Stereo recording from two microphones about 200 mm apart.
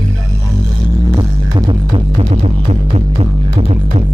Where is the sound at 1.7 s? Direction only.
30° right (ahead or behind).